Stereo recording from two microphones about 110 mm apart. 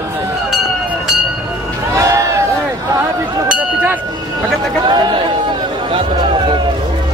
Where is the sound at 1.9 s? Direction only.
30° right (ahead or behind).